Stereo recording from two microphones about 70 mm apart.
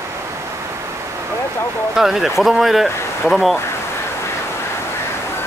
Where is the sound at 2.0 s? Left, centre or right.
Centre.